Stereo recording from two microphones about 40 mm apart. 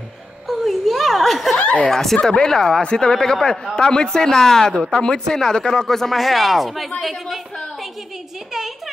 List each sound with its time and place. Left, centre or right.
0.5 s a sound: centre
1.9 s speech: centre
6.1 s speech: centre
8.5 s a woman's voice: centre